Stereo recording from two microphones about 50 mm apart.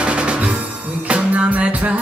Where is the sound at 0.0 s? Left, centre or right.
Right.